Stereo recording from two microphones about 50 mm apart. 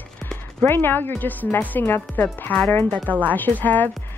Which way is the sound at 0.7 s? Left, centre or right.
Left.